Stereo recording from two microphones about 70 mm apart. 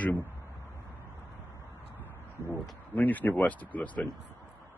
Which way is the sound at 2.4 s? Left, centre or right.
Right.